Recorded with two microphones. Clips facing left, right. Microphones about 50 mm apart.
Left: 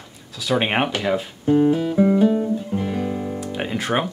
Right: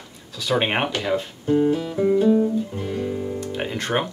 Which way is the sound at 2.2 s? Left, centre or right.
Centre.